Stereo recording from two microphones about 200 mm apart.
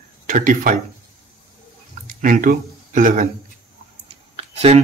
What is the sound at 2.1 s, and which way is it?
Speech, 40° right (ahead or behind).